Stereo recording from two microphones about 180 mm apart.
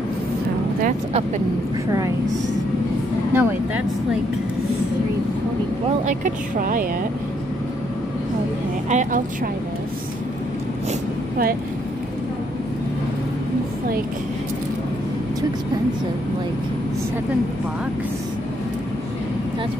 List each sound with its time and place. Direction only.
1.9 s a woman's voice: 20° right (ahead or behind)
3.3 s speech: 10° right (ahead or behind)
6.0 s speech: 45° right (ahead or behind)
8.8 s speech: 45° right (ahead or behind)
10.9 s vehicle: 55° right (ahead or behind)